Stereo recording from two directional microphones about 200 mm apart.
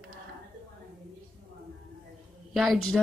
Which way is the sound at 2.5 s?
Centre (ahead or behind).